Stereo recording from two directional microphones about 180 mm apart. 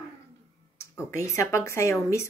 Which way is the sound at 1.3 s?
15° left (ahead or behind).